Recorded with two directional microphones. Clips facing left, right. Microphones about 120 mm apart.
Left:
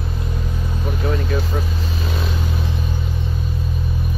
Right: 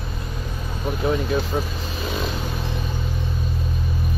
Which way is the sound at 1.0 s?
10° right (ahead or behind).